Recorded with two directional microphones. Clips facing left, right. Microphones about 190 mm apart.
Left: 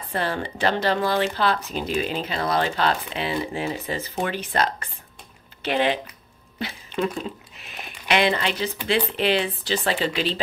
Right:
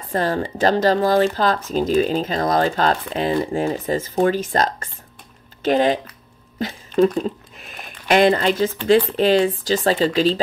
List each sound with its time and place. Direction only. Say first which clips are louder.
0.1 s speech: right 6 dB; 40° right (ahead or behind)
7.5 s a sound: right 1 dB; 45° right (ahead or behind)
8.8 s speech: right 7 dB; 40° right (ahead or behind)